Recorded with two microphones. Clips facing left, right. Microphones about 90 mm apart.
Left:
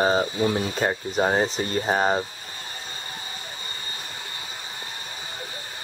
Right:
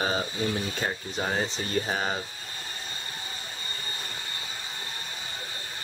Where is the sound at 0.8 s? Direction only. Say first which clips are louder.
Left 8 dB; 40° left (ahead or behind).